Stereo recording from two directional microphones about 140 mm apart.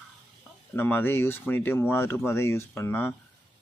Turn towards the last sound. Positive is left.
turn(degrees=15)  # may be behind; listen again after turning